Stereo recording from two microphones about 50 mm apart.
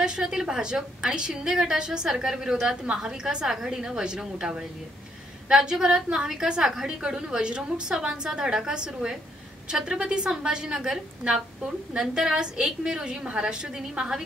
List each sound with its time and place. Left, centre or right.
0.0 s a woman's voice: centre